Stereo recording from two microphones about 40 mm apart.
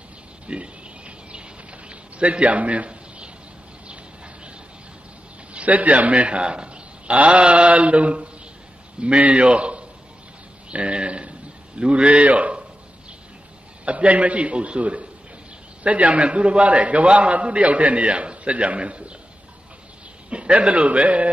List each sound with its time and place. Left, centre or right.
0.5 s a sound: right
5.5 s a man's voice: right
10.7 s a sound: right
11.8 s a man's voice: right
13.8 s a man's voice: right
20.2 s a man's voice: right